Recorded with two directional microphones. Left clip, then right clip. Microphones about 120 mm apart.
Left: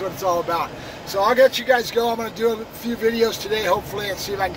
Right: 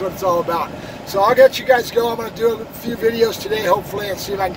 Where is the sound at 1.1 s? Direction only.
30° right (ahead or behind).